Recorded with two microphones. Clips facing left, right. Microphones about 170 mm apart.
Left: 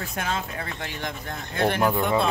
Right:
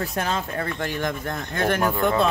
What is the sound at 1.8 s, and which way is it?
Speech, 20° left (ahead or behind).